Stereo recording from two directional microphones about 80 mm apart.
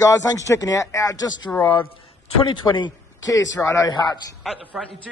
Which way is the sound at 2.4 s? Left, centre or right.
Left.